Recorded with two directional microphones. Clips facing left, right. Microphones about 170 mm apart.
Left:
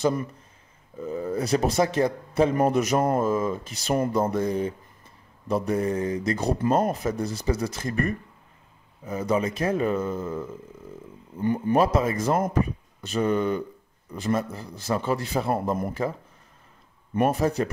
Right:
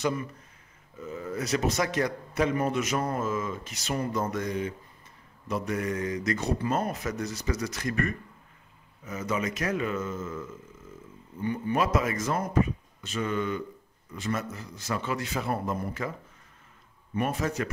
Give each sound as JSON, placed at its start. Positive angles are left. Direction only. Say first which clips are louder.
{"t": 0.0, "sound": "speech", "louder": "left 5 dB", "side_deg": 40}
{"t": 2.5, "sound": "speech", "louder": "left 6 dB", "side_deg": 40}
{"t": 11.4, "sound": "speech", "louder": "left 6 dB", "side_deg": 45}
{"t": 17.1, "sound": "speech", "louder": "left 6 dB", "side_deg": 45}